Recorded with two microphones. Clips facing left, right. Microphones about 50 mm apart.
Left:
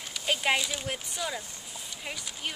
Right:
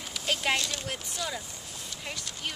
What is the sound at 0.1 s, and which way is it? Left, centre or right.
Speech, centre.